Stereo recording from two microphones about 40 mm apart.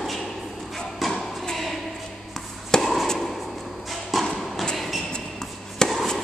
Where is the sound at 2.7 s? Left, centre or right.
Centre.